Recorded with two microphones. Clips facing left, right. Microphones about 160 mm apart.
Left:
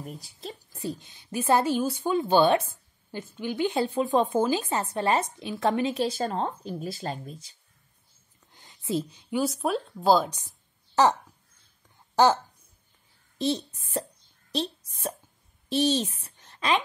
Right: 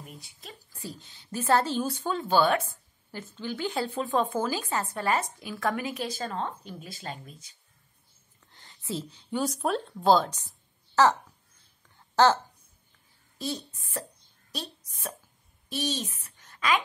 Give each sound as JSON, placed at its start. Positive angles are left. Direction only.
{"t": 0.0, "sound": "a woman's voice", "side_deg": 35}
{"t": 0.7, "sound": "a woman's voice", "side_deg": 20}
{"t": 8.5, "sound": "a sound", "side_deg": 15}
{"t": 9.4, "sound": "a woman's voice", "side_deg": 0}
{"t": 13.4, "sound": "a woman's voice", "side_deg": 25}